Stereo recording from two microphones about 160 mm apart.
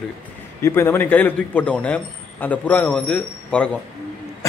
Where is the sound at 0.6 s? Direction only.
15° left (ahead or behind).